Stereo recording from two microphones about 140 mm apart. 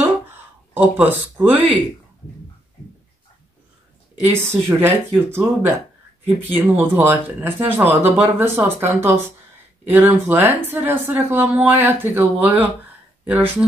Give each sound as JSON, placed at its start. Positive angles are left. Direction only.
{"t": 0.7, "sound": "speech", "side_deg": -10}
{"t": 4.2, "sound": "speech", "side_deg": -15}
{"t": 6.5, "sound": "speech", "side_deg": -15}